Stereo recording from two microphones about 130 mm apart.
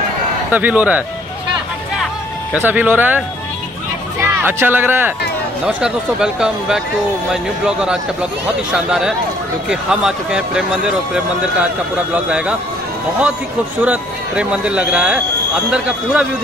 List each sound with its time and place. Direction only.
0.5 s speech: 15° right (ahead or behind)
2.5 s speech: 10° right (ahead or behind)
4.2 s speech: 15° right (ahead or behind)
12.1 s speech: 10° right (ahead or behind)
13.8 s speech: 10° right (ahead or behind)